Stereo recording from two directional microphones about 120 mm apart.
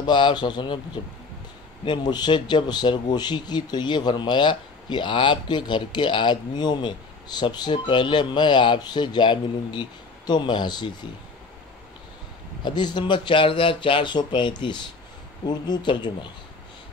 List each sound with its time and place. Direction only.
0.0 s speech: 40° left (ahead or behind)
1.9 s speech: 35° left (ahead or behind)
12.6 s speech: 40° left (ahead or behind)